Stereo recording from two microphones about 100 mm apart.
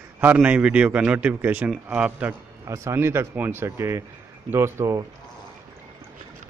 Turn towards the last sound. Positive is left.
turn(degrees=-30)  # may be behind; listen again after turning